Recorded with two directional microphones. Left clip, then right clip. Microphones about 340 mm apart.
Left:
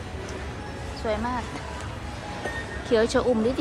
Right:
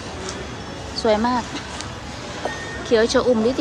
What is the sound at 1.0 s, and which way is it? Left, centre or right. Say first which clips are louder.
Speech: right 9 dB; centre.